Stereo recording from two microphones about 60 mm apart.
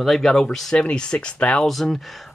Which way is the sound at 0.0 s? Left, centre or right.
Centre.